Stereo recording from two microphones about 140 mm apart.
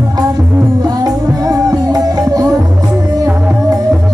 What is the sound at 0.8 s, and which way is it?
Music, 30° right (ahead or behind).